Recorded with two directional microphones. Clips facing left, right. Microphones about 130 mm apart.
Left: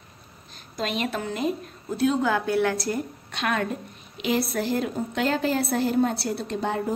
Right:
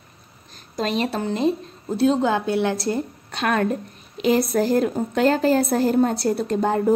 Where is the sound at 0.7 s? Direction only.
35° right (ahead or behind).